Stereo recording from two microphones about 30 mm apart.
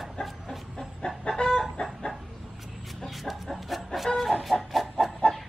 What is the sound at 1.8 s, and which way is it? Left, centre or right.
Chicken, left.